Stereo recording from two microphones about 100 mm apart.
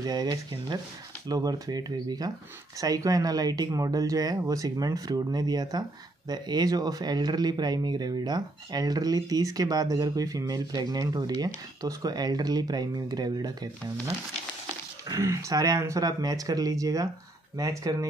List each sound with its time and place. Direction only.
0.0 s speech: 45° right (ahead or behind)